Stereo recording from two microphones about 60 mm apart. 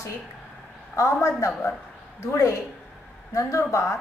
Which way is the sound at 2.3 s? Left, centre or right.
Left.